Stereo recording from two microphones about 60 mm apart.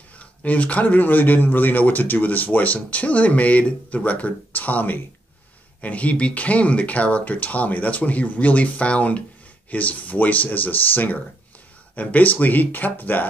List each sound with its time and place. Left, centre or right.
0.2 s speech: left